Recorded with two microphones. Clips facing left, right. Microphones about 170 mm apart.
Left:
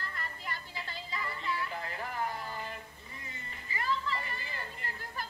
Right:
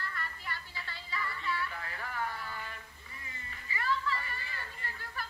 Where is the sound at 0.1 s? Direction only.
20° left (ahead or behind).